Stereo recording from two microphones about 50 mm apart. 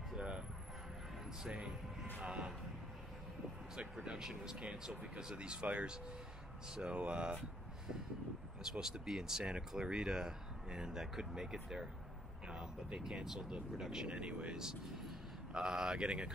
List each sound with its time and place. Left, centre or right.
0.1 s music: centre
2.2 s speech: centre
3.7 s speech: centre
8.7 s speech: centre
13.0 s speech: centre